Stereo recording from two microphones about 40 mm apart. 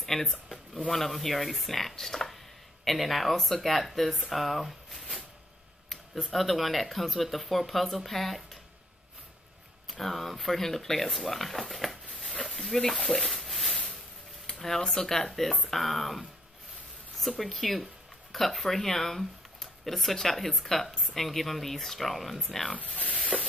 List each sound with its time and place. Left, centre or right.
0.0 s speech: centre
9.8 s speech: centre
12.9 s a sound: centre
14.9 s speech: centre
17.2 s speech: centre
23.1 s a sound: centre